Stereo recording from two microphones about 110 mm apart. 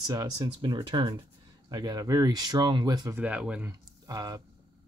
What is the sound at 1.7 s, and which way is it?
Speech, 35° right (ahead or behind).